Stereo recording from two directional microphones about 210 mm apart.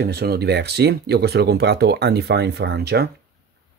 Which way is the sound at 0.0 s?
50° right (ahead or behind).